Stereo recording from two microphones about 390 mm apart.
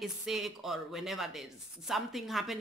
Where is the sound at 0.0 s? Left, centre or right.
Centre.